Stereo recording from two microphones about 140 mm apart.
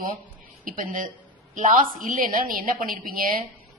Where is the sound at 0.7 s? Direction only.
75° right (ahead or behind).